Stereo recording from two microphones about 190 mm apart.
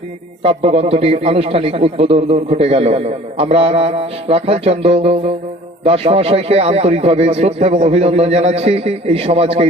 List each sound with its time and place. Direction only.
0.4 s a man's voice: 30° right (ahead or behind)